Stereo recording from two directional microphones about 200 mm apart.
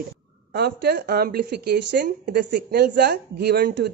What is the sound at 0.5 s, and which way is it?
Speech, 55° right (ahead or behind).